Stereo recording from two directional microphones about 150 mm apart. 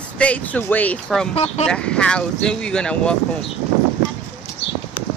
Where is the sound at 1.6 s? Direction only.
5° left (ahead or behind).